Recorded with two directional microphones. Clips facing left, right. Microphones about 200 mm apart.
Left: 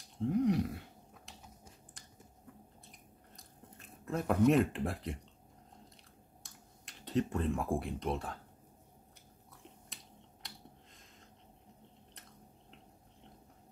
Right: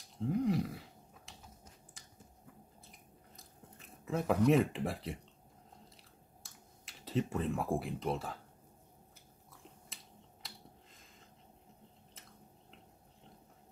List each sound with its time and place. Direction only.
0.2 s a sound: centre (ahead or behind)
2.9 s chewing: centre (ahead or behind)
6.4 s speech: centre (ahead or behind)
10.4 s finger snapping: centre (ahead or behind)